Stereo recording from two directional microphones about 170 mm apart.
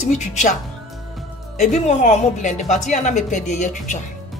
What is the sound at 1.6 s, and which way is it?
A woman's voice, 40° left (ahead or behind).